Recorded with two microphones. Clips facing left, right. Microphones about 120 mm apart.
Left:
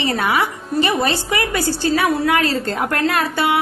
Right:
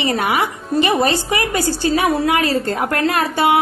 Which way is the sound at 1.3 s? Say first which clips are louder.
Right 1 dB; 25° right (ahead or behind).